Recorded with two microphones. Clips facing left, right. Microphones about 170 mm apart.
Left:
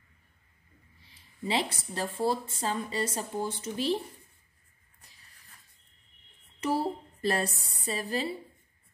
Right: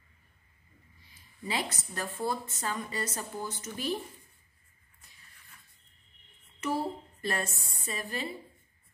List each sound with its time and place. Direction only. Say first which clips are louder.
1.4 s a woman's voice: left 4 dB; 30° left (ahead or behind)
5.0 s a sound: even; 35° left (ahead or behind)
6.6 s a woman's voice: left 3 dB; 35° left (ahead or behind)